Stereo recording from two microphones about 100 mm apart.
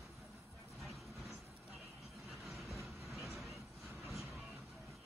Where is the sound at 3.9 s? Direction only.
20° right (ahead or behind).